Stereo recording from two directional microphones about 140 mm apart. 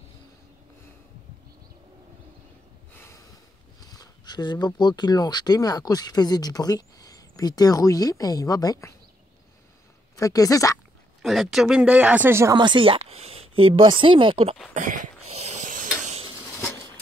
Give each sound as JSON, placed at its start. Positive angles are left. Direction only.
{"t": 2.9, "sound": "snort", "side_deg": 15}
{"t": 3.8, "sound": "speech", "side_deg": 25}
{"t": 10.1, "sound": "speech", "side_deg": 25}
{"t": 11.2, "sound": "speech", "side_deg": 0}
{"t": 12.5, "sound": "speech", "side_deg": -35}
{"t": 14.7, "sound": "a sound", "side_deg": -65}